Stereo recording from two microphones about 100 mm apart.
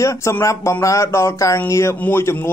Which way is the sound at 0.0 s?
30° left (ahead or behind).